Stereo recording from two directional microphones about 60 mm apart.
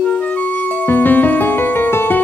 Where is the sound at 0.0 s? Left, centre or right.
Left.